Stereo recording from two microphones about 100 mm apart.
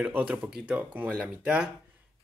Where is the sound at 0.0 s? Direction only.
15° right (ahead or behind).